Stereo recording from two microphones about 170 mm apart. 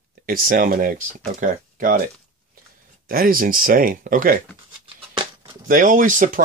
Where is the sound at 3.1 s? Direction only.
60° right (ahead or behind).